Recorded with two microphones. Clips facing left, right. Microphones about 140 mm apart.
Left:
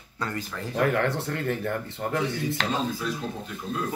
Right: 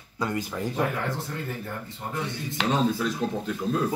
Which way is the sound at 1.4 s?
75° left (ahead or behind).